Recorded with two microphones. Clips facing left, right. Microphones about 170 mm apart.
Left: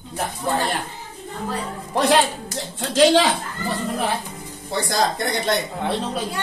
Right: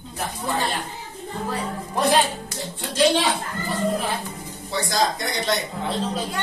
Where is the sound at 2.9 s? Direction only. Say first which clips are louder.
Left 4 dB; 90° left.